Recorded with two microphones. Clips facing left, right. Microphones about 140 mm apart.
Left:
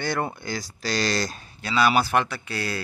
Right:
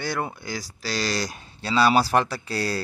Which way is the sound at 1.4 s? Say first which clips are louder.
Right 2 dB; 30° right (ahead or behind).